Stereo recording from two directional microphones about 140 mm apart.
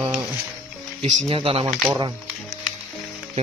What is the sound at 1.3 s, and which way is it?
Speech, 40° right (ahead or behind).